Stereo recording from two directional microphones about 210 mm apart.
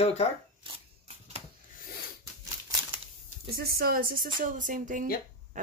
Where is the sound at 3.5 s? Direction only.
45° right (ahead or behind).